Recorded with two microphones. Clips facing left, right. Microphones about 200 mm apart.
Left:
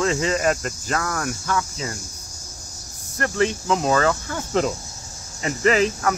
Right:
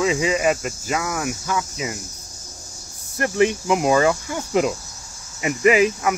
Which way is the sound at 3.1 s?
15° right (ahead or behind).